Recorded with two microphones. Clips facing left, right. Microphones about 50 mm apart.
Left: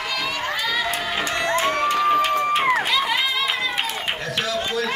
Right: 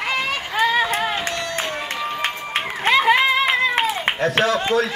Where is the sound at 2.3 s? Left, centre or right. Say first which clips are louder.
Left 7 dB; left.